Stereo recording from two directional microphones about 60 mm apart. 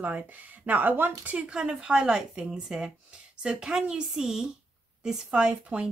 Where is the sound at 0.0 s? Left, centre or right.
Right.